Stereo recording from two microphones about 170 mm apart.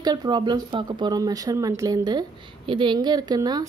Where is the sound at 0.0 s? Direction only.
25° right (ahead or behind).